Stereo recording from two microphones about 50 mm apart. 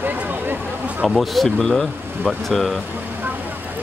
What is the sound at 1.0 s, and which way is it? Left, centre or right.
Speech, centre.